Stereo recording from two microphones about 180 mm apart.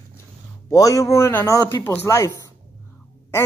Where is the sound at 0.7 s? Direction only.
20° left (ahead or behind).